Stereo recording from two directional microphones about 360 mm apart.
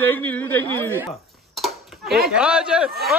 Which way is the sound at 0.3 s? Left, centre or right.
Centre.